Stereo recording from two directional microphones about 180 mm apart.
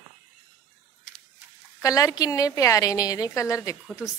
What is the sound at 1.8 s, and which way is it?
A woman's voice, 20° left (ahead or behind).